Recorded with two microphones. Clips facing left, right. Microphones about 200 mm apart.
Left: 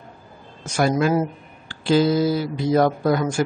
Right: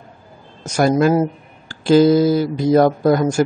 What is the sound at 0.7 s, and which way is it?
Speech, 45° right (ahead or behind).